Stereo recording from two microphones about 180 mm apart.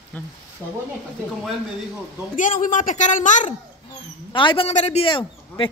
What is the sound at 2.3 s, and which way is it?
A woman's voice, 45° left (ahead or behind).